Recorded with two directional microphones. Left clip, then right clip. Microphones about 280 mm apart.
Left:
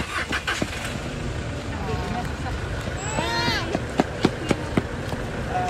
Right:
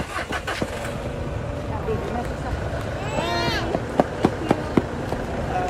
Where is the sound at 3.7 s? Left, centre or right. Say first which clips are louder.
Right 3 dB; right.